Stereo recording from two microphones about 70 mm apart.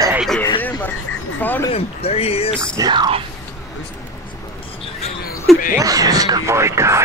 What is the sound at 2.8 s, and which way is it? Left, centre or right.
Speech, right.